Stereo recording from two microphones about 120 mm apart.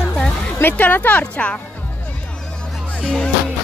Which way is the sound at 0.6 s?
15° left (ahead or behind).